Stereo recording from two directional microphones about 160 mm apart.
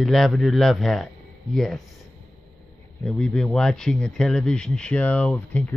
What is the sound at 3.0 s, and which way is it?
Speech, 5° left (ahead or behind).